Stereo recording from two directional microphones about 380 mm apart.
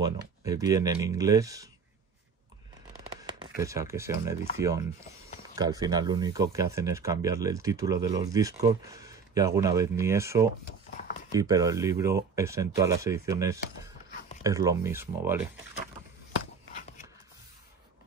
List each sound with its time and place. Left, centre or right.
0.0 s speech: centre
3.2 s speech: centre
16.7 s a sound: centre